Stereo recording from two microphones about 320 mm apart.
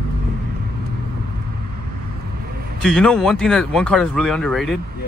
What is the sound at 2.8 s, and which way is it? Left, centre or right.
Speech, centre.